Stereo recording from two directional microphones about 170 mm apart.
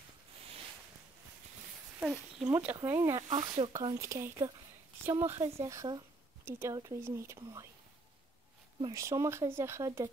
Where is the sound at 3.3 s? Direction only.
25° right (ahead or behind).